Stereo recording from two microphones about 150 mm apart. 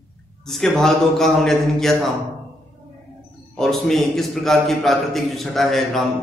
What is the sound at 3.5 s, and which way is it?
A man's voice, centre (ahead or behind).